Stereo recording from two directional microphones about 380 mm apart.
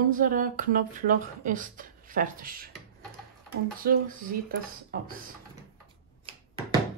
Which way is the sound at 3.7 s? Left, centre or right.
Right.